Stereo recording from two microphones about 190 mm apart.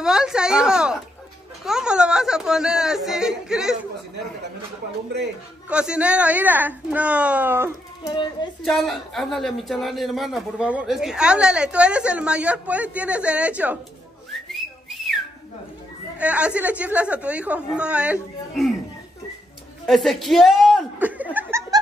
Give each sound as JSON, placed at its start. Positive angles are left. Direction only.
{"t": 0.0, "sound": "speech", "side_deg": -5}
{"t": 5.7, "sound": "a woman's voice", "side_deg": -5}
{"t": 8.0, "sound": "speech", "side_deg": 25}
{"t": 8.6, "sound": "speech", "side_deg": 0}
{"t": 14.3, "sound": "whistling", "side_deg": 0}
{"t": 16.2, "sound": "a woman's voice", "side_deg": -5}
{"t": 19.9, "sound": "speech", "side_deg": 0}